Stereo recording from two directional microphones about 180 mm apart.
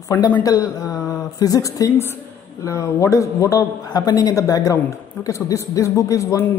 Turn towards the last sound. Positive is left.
turn(degrees=20)  # may be behind; listen again after turning